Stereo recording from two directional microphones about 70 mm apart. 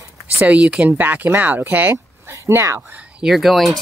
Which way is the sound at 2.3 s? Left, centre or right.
Right.